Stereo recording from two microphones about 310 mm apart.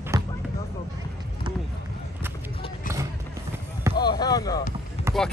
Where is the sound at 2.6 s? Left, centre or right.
Centre.